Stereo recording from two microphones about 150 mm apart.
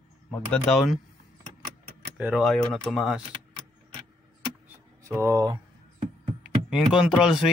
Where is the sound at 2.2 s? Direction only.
Centre (ahead or behind).